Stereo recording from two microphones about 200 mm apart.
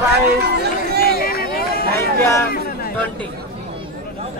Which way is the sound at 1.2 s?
50° left (ahead or behind).